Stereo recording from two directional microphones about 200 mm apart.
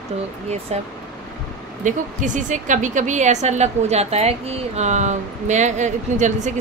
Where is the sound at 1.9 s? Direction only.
40° right (ahead or behind).